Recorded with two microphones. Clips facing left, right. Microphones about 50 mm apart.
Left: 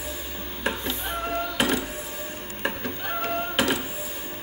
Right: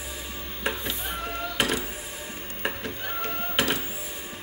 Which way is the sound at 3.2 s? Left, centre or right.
Centre.